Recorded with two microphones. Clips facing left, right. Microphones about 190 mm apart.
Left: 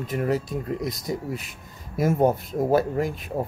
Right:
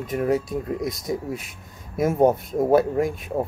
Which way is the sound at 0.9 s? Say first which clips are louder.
Right 2 dB; centre (ahead or behind).